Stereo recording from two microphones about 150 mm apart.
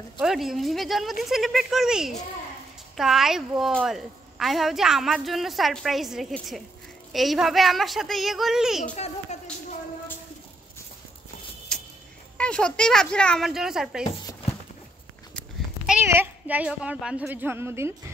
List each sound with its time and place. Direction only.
0.2 s a woman's voice: 5° right (ahead or behind)
8.9 s a child's voice: 45° left (ahead or behind)
11.7 s a sound: 5° left (ahead or behind)
12.4 s a woman's voice: 5° left (ahead or behind)
15.9 s speech: 15° right (ahead or behind)